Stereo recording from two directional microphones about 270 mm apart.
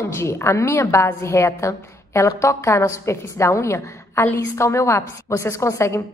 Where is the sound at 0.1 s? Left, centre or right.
Centre.